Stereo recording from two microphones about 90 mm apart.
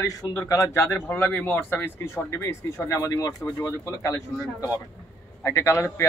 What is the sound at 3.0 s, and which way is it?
Speech, 40° left (ahead or behind).